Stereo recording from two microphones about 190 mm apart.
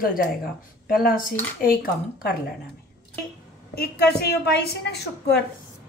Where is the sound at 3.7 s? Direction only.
60° left (ahead or behind).